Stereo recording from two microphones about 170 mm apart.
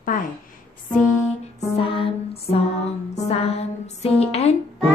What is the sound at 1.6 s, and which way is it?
Music, 35° left (ahead or behind).